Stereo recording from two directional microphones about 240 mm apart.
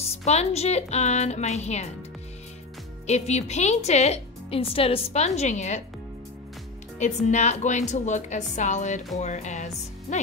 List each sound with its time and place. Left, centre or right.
0.0 s a woman's voice: left
3.1 s a woman's voice: left
7.0 s a woman's voice: left